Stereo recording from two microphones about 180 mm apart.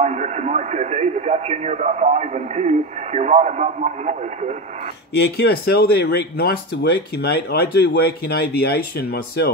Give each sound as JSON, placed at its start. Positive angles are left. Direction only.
{"t": 0.0, "sound": "speech", "side_deg": -40}
{"t": 5.1, "sound": "speech", "side_deg": 65}